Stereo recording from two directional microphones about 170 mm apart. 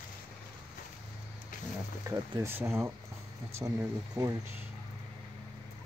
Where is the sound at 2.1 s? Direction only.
15° right (ahead or behind).